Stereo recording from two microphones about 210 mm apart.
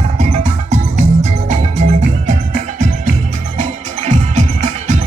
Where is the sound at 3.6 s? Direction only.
35° right (ahead or behind).